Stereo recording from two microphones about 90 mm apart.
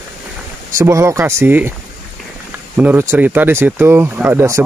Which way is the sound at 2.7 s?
15° right (ahead or behind).